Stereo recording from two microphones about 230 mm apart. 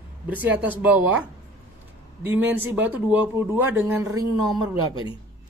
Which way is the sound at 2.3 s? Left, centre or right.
Centre.